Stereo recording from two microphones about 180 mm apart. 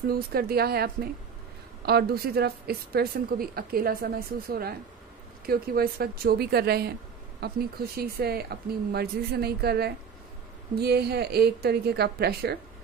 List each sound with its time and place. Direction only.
0.1 s speech: 60° right (ahead or behind)